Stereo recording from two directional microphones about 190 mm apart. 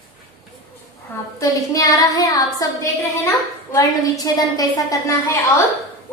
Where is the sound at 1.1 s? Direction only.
15° left (ahead or behind).